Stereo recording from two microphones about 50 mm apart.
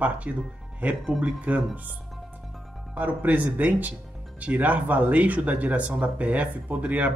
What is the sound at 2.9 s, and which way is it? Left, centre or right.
Speech, right.